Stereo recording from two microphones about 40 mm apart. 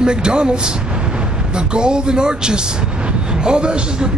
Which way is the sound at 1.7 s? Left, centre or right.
Right.